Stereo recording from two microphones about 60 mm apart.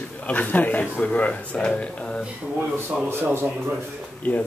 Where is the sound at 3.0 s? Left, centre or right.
Right.